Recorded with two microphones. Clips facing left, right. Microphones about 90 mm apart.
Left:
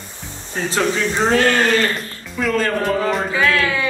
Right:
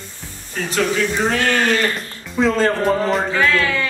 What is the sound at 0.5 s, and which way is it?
Speech, 30° left (ahead or behind).